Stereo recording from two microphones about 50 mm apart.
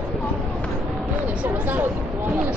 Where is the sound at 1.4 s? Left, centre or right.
Right.